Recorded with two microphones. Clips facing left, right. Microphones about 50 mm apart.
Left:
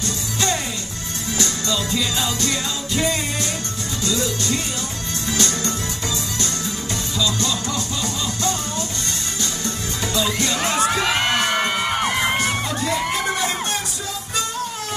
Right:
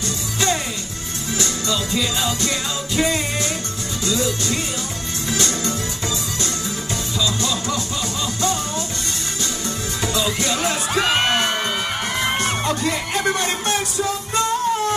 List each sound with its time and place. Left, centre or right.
0.0 s music: right
7.3 s music: right